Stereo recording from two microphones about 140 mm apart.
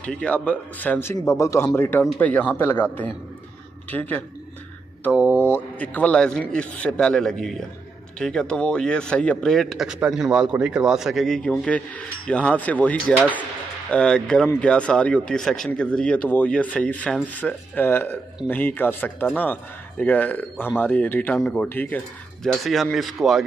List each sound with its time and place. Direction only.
0.0 s speech: 10° left (ahead or behind)
5.1 s speech: 10° right (ahead or behind)
5.4 s a man's voice: 15° left (ahead or behind)